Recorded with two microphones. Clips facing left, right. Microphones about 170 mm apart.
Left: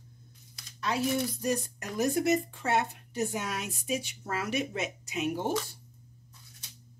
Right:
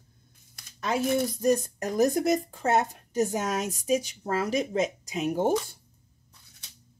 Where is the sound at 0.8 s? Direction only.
50° right (ahead or behind).